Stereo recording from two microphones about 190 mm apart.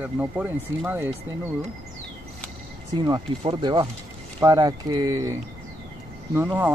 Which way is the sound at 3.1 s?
25° right (ahead or behind).